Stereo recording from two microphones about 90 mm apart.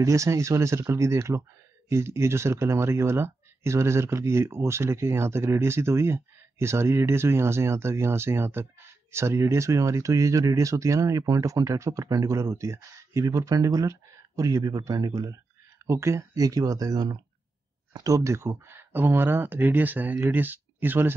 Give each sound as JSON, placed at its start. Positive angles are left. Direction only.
{"t": 0.0, "sound": "speech", "side_deg": -35}
{"t": 15.9, "sound": "speech", "side_deg": -35}